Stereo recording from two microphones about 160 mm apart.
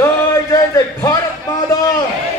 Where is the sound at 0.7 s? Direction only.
20° left (ahead or behind).